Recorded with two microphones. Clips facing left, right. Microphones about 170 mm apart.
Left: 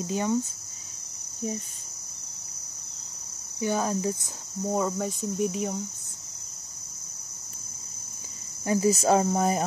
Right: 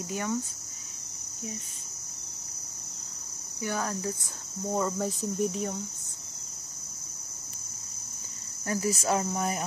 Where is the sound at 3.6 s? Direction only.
20° left (ahead or behind).